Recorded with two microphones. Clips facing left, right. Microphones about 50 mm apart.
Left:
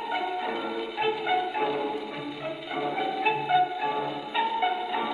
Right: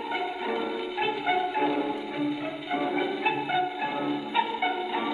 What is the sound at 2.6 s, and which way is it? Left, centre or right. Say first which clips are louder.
Marimba: right 2 dB; centre.